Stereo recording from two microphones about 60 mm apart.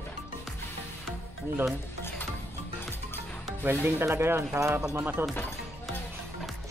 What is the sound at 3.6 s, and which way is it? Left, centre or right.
Speech, right.